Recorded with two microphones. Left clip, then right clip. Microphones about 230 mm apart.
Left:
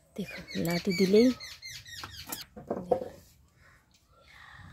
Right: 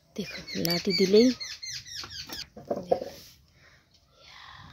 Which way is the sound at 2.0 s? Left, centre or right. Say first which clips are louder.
Right 3 dB; left.